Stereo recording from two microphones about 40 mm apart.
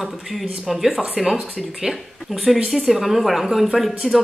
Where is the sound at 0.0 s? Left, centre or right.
Centre.